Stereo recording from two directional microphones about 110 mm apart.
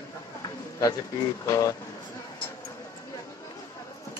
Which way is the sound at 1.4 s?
30° left (ahead or behind).